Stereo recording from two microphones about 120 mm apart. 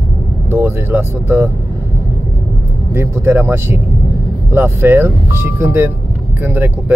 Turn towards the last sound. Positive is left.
turn(degrees=-15)  # may be behind; listen again after turning